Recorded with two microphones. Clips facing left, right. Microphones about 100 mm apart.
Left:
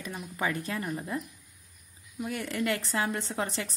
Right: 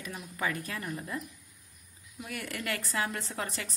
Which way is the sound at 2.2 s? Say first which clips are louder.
Left 6 dB; 25° left (ahead or behind).